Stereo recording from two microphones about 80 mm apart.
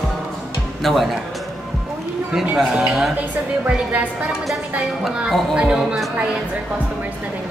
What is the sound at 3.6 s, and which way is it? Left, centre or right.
Speech, centre.